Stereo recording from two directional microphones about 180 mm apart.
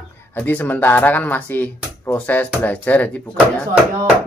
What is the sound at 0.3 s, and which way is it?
Speech, 10° left (ahead or behind).